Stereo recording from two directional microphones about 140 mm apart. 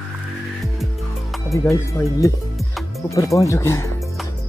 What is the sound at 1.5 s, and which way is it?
Speech, 20° left (ahead or behind).